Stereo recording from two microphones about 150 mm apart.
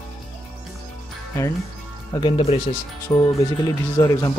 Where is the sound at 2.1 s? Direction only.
35° left (ahead or behind).